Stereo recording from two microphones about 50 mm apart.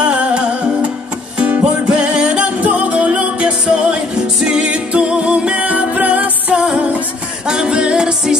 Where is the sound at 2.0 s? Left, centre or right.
Right.